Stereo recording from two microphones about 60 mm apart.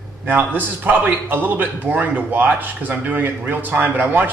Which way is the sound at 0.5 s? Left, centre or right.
Right.